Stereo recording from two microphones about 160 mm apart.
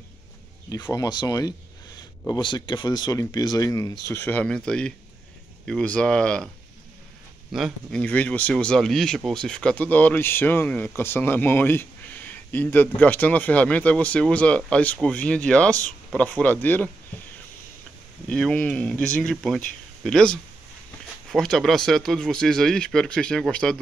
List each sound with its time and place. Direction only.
0.9 s speech: 25° left (ahead or behind); by 6.5 s 5° left (ahead or behind)
7.5 s speech: centre (ahead or behind)
17.1 s a sound: 10° left (ahead or behind)
18.3 s speech: 5° left (ahead or behind)